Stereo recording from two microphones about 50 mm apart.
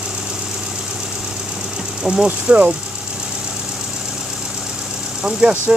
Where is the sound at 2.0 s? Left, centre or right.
Centre.